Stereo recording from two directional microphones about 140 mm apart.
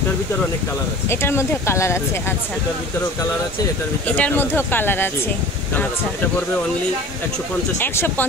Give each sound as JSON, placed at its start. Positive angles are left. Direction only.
{"t": 1.2, "sound": "speech", "side_deg": 15}
{"t": 4.2, "sound": "speech", "side_deg": 15}
{"t": 7.8, "sound": "speech", "side_deg": 15}